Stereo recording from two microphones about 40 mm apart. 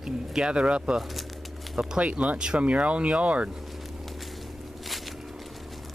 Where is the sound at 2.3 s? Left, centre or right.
Right.